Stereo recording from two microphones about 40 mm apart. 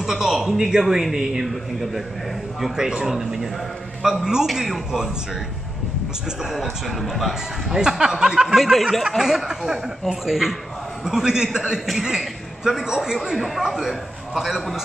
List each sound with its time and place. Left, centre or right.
0.0 s a sound: centre
0.6 s speech: centre
2.7 s speech: centre
3.1 s speech: centre
6.4 s speech: centre
8.0 s speech: centre
8.5 s speech: centre
12.1 s a sound: centre
12.8 s a man's voice: centre